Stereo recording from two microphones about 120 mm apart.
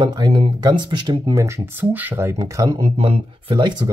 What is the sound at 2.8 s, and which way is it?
Speech, 55° right (ahead or behind).